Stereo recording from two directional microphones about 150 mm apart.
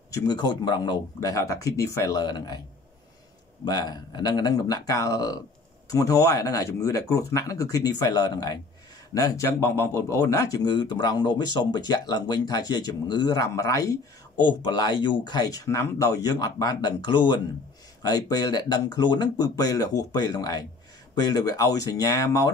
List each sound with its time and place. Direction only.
0.1 s speech: 30° left (ahead or behind)
3.6 s speech: 25° left (ahead or behind)